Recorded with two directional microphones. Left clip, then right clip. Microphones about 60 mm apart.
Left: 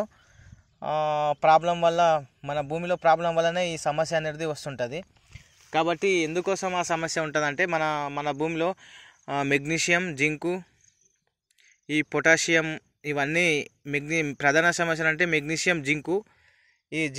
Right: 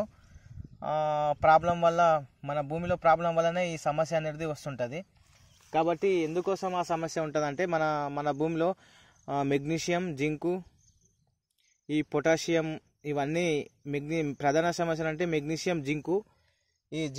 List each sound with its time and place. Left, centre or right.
0.7 s a man's voice: centre
5.9 s speech: left
7.5 s speech: right
9.2 s speech: right
11.9 s speech: centre